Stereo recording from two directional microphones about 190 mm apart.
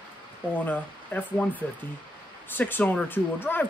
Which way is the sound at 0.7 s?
10° left (ahead or behind).